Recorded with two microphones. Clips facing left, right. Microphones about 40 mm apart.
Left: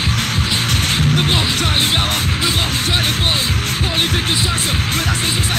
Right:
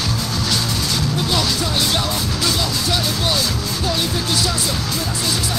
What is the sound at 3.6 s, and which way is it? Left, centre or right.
Music, left.